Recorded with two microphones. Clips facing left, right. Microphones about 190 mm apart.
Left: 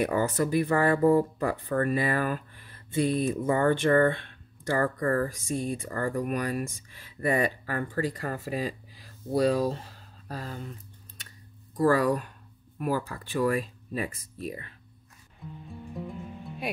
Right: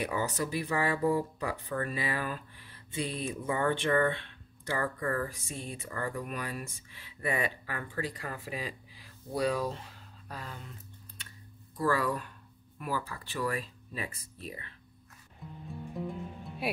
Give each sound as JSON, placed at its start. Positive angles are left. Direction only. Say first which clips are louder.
{"t": 0.0, "sound": "speech", "louder": "left 7 dB", "side_deg": 50}
{"t": 11.7, "sound": "speech", "louder": "left 7 dB", "side_deg": 40}
{"t": 15.7, "sound": "music", "louder": "right 1 dB", "side_deg": 0}